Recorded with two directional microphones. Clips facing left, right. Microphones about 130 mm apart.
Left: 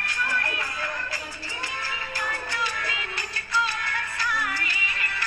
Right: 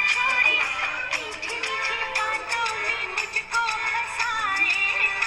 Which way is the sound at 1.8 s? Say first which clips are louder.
Right 4 dB; 60° right (ahead or behind).